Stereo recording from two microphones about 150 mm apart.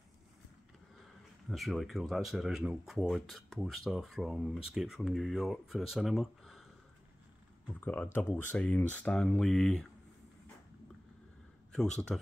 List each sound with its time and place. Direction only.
1.5 s speech: centre (ahead or behind)
7.6 s speech: 10° left (ahead or behind)
11.7 s speech: 5° left (ahead or behind)